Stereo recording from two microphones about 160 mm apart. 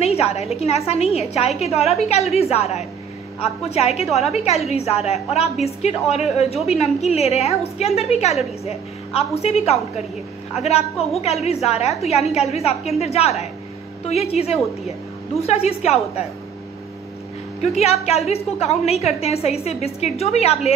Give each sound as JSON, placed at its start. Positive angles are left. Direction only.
{"t": 0.0, "sound": "a woman's voice", "side_deg": 40}
{"t": 17.6, "sound": "a woman's voice", "side_deg": 40}